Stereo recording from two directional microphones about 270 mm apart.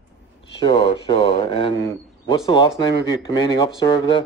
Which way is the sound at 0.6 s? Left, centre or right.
Centre.